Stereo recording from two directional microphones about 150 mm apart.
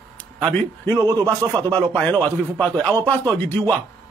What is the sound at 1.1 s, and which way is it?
Speech, 25° right (ahead or behind).